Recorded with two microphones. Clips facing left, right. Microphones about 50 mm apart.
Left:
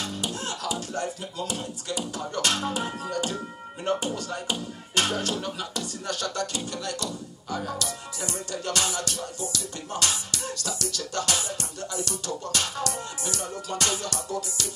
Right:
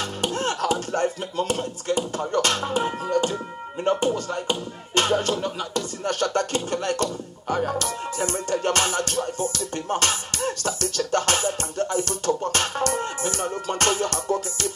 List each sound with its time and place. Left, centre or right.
0.2 s speech: right
4.0 s music: right